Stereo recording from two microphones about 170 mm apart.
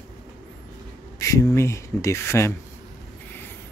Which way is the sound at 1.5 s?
15° left (ahead or behind).